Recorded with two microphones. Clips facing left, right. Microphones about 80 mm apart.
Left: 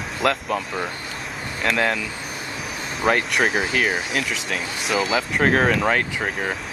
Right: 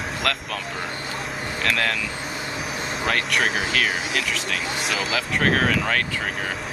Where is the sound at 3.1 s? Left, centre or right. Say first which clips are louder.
Left 4 dB; centre.